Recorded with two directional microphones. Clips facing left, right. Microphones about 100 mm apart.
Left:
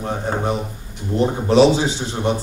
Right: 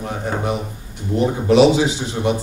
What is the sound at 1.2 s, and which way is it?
Speech, 35° left (ahead or behind).